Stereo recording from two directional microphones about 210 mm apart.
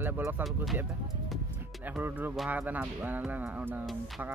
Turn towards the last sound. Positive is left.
turn(degrees=-5)  # may be behind; listen again after turning